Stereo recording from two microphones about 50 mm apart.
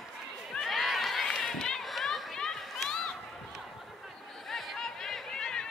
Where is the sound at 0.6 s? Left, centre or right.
Centre.